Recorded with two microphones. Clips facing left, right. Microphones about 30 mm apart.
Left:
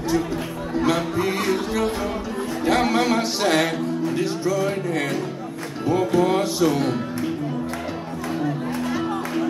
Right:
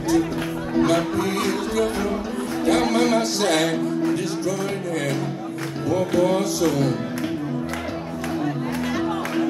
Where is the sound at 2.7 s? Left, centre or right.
Centre.